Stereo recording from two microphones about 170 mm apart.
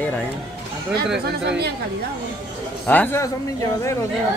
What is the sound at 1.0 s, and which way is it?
Speech, 5° right (ahead or behind).